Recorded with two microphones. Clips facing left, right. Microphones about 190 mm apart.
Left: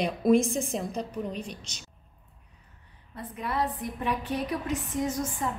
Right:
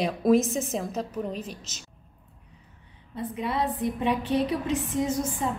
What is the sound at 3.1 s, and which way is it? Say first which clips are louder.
A woman's voice: right 3 dB; 25° right (ahead or behind).